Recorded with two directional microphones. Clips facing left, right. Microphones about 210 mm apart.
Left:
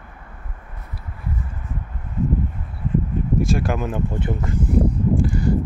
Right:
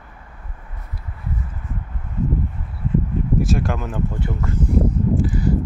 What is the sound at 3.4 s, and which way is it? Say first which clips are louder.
Speech: even; centre (ahead or behind).